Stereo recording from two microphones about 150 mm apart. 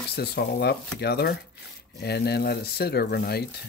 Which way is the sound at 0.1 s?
90° left.